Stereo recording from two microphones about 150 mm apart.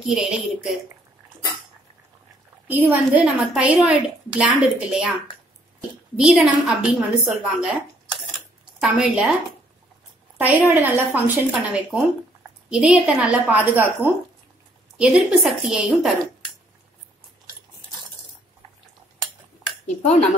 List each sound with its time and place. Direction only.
0.0 s a woman's voice: 5° right (ahead or behind)
2.7 s a woman's voice: 10° right (ahead or behind)
6.1 s a woman's voice: 5° right (ahead or behind)
8.8 s a woman's voice: 5° right (ahead or behind)
10.3 s a woman's voice: 10° right (ahead or behind)
11.5 s a woman's voice: centre (ahead or behind)
20.0 s speech: 50° left (ahead or behind)